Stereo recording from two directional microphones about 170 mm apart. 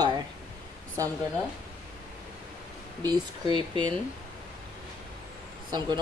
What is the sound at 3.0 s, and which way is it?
Speech, 25° right (ahead or behind).